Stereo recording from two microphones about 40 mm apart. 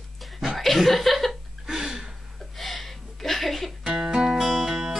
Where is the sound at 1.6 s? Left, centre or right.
Centre.